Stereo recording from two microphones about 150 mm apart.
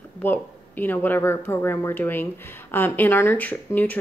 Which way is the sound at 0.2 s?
15° left (ahead or behind).